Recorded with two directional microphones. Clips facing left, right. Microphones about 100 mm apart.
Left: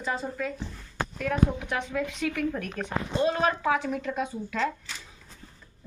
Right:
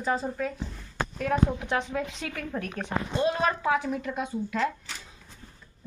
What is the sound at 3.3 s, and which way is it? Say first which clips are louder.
Speech: even; 5° right (ahead or behind).